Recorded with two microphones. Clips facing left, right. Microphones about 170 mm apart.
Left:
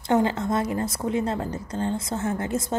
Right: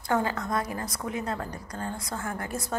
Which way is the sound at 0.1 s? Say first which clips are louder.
Left 5 dB; 25° left (ahead or behind).